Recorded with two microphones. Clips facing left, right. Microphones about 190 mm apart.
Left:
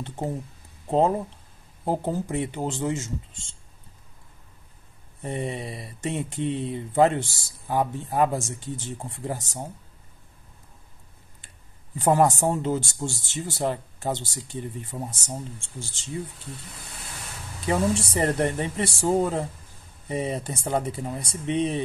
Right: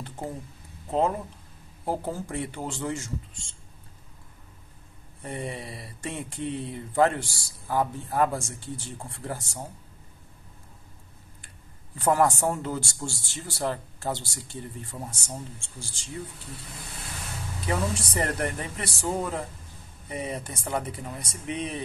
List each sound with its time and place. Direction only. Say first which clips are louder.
0.0 s speech: left 5 dB; 25° left (ahead or behind)
1.9 s speech: left 4 dB; 20° left (ahead or behind)
5.2 s speech: left 4 dB; 20° left (ahead or behind)
12.0 s speech: left 2 dB; 20° left (ahead or behind)
17.6 s speech: left 5 dB; 25° left (ahead or behind)